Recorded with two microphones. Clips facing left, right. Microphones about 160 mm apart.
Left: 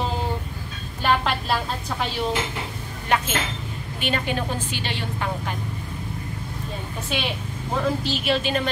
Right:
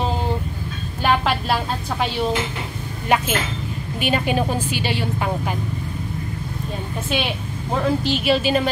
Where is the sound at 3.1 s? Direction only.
10° right (ahead or behind).